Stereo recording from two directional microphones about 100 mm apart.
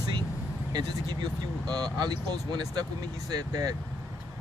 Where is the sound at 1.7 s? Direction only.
45° right (ahead or behind).